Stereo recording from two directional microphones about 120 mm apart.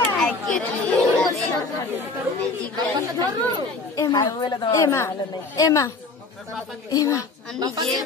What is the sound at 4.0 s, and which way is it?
Speech, 30° left (ahead or behind).